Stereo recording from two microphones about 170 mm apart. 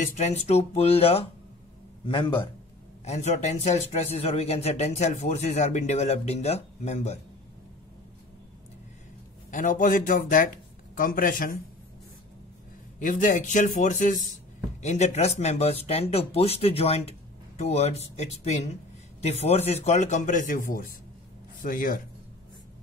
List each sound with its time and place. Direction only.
0.0 s a man's voice: 40° left (ahead or behind)
3.1 s speech: 40° left (ahead or behind)
9.5 s speech: 50° left (ahead or behind)
13.0 s speech: 50° left (ahead or behind)